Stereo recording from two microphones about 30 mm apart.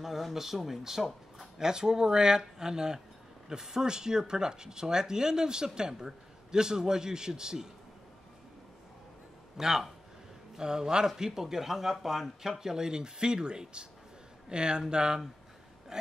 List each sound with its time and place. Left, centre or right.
0.0 s speech: centre
1.6 s speech: right
9.6 s a man's voice: centre